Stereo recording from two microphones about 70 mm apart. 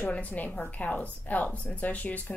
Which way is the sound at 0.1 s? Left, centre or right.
Left.